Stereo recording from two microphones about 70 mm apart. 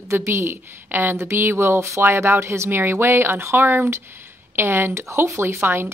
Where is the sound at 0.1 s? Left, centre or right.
Right.